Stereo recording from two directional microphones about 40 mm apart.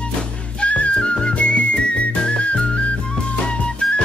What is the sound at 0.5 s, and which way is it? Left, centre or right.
Music, left.